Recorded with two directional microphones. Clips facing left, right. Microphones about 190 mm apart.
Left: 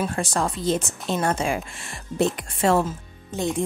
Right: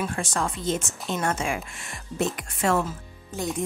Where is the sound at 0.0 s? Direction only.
35° left (ahead or behind).